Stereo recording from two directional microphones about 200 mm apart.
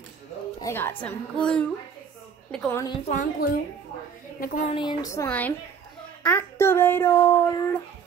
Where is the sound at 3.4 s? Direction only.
45° left (ahead or behind).